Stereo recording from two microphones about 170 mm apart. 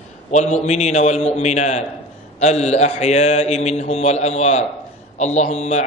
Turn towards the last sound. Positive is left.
turn(degrees=45)  # may be behind; listen again after turning